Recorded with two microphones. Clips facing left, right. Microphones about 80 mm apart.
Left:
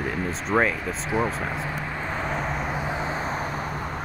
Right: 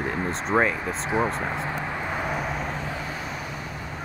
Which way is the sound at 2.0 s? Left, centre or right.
Centre.